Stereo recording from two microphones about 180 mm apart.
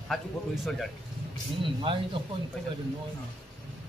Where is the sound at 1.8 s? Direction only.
30° right (ahead or behind).